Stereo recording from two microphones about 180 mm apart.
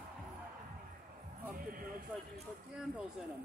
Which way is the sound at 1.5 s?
50° right (ahead or behind).